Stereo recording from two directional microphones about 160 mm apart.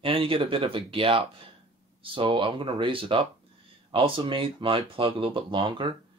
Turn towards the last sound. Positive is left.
turn(degrees=-30)  # may be behind; listen again after turning